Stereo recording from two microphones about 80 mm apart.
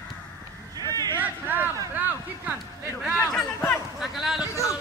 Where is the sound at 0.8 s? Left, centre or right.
Right.